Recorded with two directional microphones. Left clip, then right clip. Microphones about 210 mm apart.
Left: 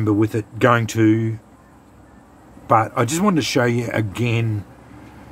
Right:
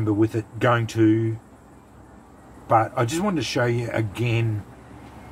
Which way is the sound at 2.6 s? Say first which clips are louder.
Left 3 dB; 50° left (ahead or behind).